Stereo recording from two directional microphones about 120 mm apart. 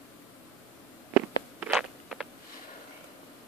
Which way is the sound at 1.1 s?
5° right (ahead or behind).